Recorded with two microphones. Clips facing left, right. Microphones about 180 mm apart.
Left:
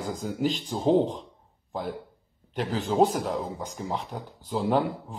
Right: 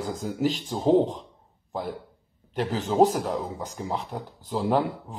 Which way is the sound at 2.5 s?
Centre (ahead or behind).